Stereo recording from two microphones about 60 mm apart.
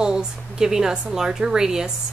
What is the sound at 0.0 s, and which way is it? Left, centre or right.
Speech, centre.